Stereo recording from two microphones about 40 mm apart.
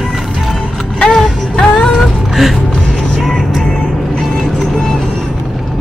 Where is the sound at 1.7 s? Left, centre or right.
Left.